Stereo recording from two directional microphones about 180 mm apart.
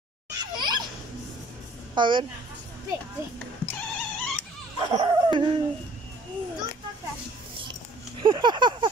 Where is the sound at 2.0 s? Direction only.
25° right (ahead or behind).